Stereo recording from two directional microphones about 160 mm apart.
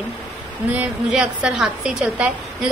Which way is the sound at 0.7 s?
5° right (ahead or behind).